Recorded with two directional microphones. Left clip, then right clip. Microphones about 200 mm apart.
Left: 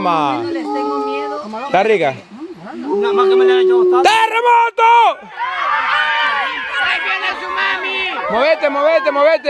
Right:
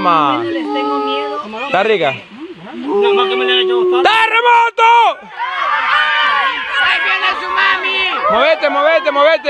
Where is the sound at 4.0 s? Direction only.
20° left (ahead or behind).